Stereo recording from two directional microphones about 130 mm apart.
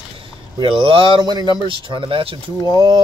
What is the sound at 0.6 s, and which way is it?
Speech, 40° right (ahead or behind).